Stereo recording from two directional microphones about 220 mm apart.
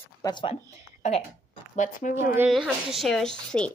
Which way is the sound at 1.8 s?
35° left (ahead or behind).